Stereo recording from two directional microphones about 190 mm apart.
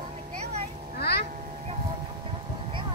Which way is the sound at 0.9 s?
55° left (ahead or behind).